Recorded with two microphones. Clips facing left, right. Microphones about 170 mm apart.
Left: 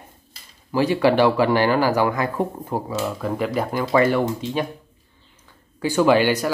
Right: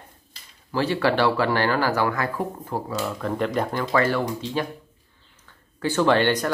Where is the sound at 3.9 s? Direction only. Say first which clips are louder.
Left 5 dB; 20° left (ahead or behind).